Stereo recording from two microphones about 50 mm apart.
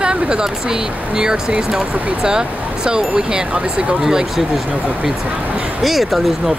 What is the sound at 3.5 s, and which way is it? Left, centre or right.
Speech, right.